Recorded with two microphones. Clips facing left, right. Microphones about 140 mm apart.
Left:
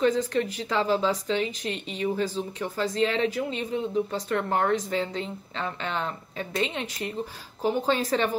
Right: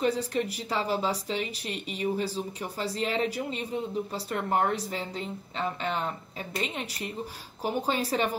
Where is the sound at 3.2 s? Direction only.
10° right (ahead or behind).